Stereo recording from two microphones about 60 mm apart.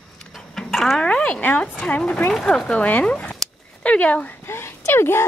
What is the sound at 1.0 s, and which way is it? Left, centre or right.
Speech, left.